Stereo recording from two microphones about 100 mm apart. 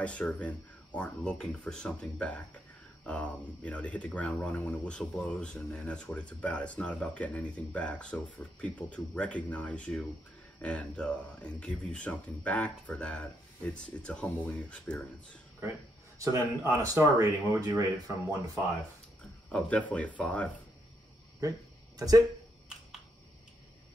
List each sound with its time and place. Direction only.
0.0 s speech: 15° left (ahead or behind)
16.2 s speech: 30° right (ahead or behind)
19.9 s speech: 15° left (ahead or behind)
21.4 s a sound: 35° right (ahead or behind)